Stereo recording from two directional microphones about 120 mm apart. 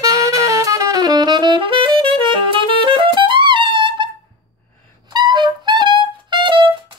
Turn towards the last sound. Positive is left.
turn(degrees=-45)  # may be behind; listen again after turning